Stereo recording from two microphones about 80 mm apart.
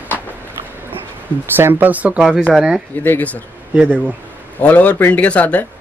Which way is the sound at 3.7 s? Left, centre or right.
Centre.